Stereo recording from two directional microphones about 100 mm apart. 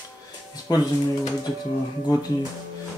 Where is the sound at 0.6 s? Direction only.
40° left (ahead or behind).